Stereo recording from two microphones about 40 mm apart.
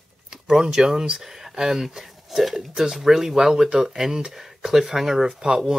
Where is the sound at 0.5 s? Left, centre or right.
Centre.